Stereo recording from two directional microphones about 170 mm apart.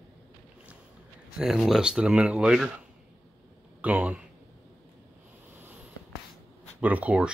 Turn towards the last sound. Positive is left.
turn(degrees=-5)  # may be behind; listen again after turning